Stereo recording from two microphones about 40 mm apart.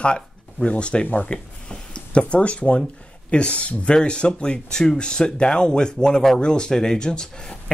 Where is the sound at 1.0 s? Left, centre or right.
Left.